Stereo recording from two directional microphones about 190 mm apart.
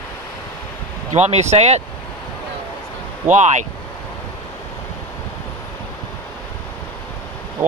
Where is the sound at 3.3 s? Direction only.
40° right (ahead or behind).